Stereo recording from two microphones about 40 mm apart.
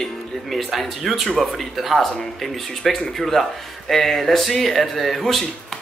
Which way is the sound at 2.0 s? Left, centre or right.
Centre.